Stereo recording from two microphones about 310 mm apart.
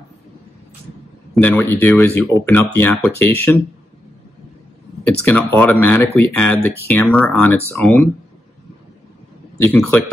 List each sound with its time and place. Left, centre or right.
1.3 s speech: centre
5.2 s speech: centre
6.6 s speech: left
6.9 s speech: centre
9.6 s speech: centre